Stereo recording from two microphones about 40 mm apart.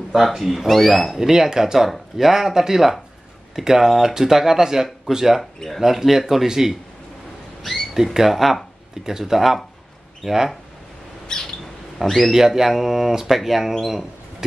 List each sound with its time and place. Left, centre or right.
0.1 s speech: centre
1.1 s speech: centre
5.4 s speech: centre
5.8 s speech: centre
7.9 s speech: centre
11.3 s a sound: centre
12.3 s speech: centre